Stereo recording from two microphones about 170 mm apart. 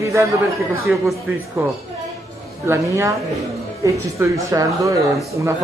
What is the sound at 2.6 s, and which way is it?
Speech, 15° right (ahead or behind).